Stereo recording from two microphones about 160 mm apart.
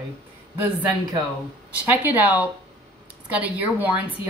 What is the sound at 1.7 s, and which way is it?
Speech, 10° right (ahead or behind).